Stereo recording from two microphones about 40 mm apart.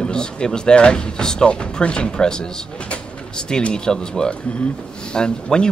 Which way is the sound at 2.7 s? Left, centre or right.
Left.